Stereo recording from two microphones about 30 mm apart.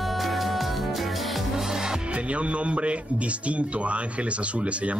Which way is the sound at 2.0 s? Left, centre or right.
Right.